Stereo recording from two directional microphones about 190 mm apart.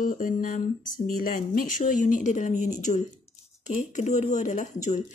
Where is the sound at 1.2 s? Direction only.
45° left (ahead or behind).